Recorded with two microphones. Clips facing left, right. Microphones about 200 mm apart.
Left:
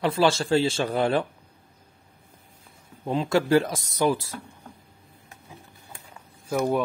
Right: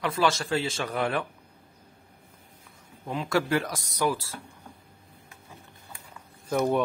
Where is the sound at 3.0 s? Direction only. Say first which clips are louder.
Left 4 dB; 30° left (ahead or behind).